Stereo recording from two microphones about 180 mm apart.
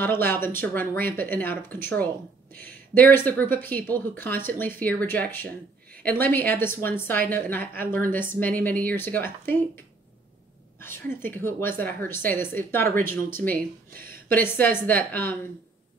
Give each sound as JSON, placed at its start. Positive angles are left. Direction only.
{"t": 0.0, "sound": "a woman's voice", "side_deg": 10}
{"t": 10.8, "sound": "a woman's voice", "side_deg": 10}
{"t": 13.8, "sound": "a sound", "side_deg": -55}
{"t": 14.3, "sound": "a woman's voice", "side_deg": 10}